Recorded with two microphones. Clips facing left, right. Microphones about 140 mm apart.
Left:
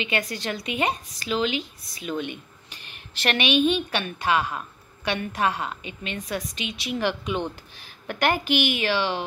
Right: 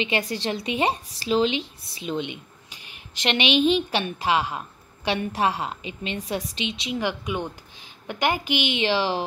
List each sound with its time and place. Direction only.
0.0 s a woman's voice: 30° right (ahead or behind)
6.9 s a woman's voice: 15° right (ahead or behind); by 9.2 s 30° right (ahead or behind)